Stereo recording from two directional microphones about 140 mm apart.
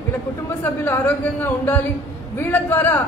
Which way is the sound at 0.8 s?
15° left (ahead or behind).